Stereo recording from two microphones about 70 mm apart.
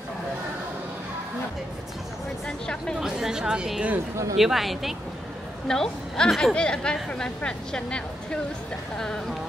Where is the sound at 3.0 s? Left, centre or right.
Centre.